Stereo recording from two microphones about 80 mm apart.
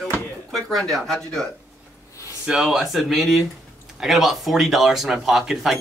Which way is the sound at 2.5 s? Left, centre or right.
Centre.